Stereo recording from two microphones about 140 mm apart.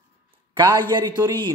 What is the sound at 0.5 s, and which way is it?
A man's voice, 35° right (ahead or behind).